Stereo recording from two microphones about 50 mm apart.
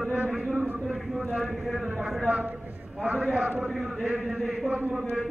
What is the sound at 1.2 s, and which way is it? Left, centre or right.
Speech, right.